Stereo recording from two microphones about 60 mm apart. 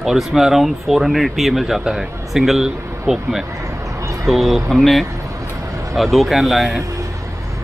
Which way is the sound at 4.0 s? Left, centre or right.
Right.